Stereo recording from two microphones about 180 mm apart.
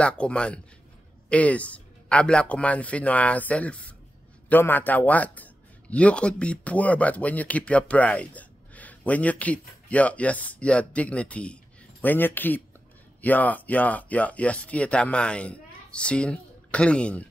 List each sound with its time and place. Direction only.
0.0 s a man's voice: 5° left (ahead or behind)